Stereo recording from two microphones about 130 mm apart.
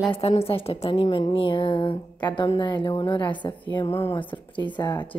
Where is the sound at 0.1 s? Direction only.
50° left (ahead or behind).